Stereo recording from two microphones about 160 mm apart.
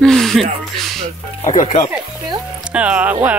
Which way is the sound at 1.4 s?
50° left (ahead or behind).